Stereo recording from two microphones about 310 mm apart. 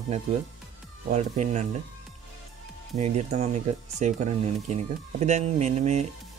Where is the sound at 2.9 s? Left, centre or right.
Right.